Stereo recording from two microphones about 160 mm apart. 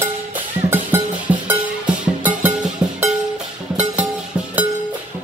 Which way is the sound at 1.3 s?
10° right (ahead or behind).